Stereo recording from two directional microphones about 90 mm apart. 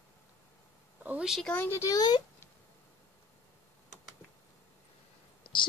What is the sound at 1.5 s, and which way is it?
Speech, 25° left (ahead or behind).